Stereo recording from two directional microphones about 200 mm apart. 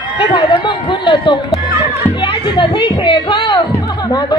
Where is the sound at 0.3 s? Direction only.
25° left (ahead or behind).